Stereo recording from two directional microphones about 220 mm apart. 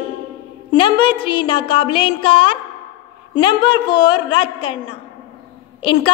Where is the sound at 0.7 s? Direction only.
20° left (ahead or behind).